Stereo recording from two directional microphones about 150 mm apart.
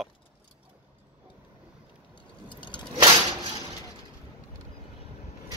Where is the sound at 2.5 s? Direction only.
30° left (ahead or behind).